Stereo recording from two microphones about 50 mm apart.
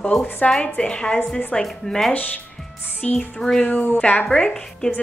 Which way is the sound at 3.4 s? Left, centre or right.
Centre.